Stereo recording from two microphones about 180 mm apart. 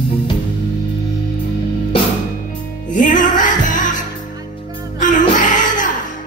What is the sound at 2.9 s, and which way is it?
Music, 45° left (ahead or behind).